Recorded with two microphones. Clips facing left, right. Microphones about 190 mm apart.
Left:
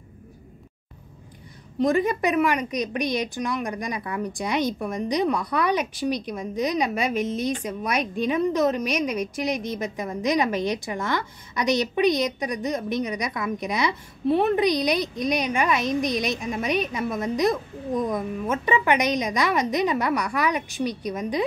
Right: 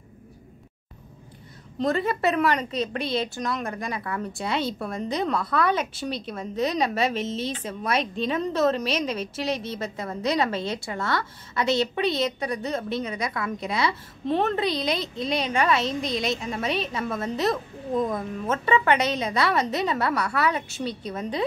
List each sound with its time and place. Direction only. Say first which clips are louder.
1.8 s a woman's voice: left 3 dB; 15° left (ahead or behind)